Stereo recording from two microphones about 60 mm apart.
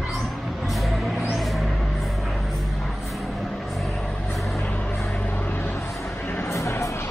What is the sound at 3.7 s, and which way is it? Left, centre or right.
Vehicle, centre.